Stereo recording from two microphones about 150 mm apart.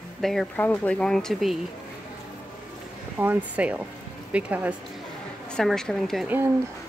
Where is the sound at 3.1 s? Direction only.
10° right (ahead or behind).